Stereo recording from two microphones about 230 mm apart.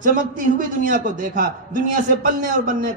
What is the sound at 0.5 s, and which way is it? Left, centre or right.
A man's voice, right.